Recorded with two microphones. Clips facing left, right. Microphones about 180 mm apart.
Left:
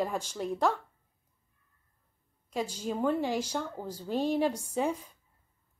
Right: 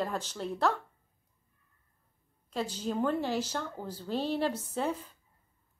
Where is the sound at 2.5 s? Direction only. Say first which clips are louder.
Even; 10° left (ahead or behind).